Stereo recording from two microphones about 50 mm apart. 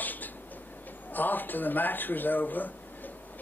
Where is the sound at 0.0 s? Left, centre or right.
Left.